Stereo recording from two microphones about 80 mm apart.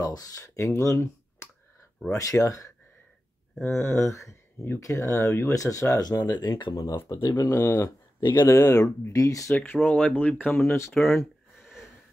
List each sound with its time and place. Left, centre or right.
0.0 s speech: left
7.2 s speech: left
7.6 s speech: left
8.2 s speech: left
8.5 s speech: left
9.6 s speech: centre
11.0 s a sound: centre